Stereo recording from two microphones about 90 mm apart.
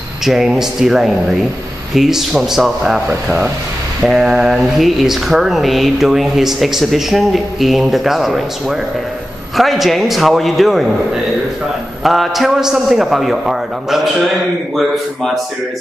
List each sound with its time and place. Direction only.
0.2 s speech: 5° right (ahead or behind)
3.1 s speech: 20° right (ahead or behind)
4.0 s speech: 5° right (ahead or behind)
12.0 s speech: centre (ahead or behind)